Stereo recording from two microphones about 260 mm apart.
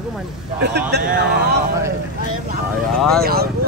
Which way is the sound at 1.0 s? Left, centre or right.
Right.